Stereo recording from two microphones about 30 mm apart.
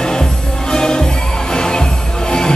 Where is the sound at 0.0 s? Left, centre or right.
Left.